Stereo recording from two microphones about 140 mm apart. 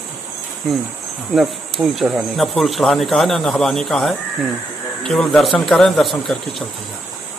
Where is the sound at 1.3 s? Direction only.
Centre (ahead or behind).